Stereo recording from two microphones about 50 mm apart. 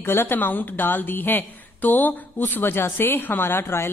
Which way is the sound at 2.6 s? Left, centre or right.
Left.